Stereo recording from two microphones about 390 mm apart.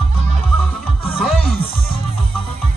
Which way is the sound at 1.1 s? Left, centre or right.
Centre.